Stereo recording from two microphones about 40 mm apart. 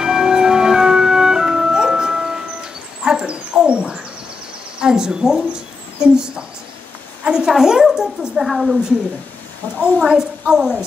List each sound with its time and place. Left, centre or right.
0.0 s music: centre
3.3 s a sound: right
4.7 s a woman's voice: centre
8.5 s a woman's voice: centre
9.7 s a woman's voice: left
10.0 s a woman's voice: centre